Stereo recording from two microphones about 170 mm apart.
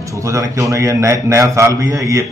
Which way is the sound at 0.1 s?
20° right (ahead or behind).